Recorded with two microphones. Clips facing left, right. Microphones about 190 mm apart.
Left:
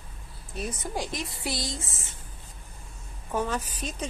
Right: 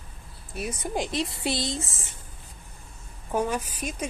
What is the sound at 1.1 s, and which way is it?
Speech, 25° right (ahead or behind).